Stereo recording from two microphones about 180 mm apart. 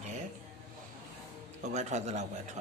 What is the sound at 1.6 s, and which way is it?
Speech, 40° right (ahead or behind).